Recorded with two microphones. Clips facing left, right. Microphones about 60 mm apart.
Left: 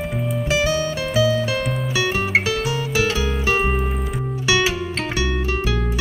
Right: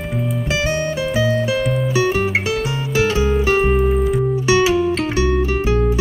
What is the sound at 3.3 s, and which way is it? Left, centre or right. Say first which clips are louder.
Music: right 5 dB; centre.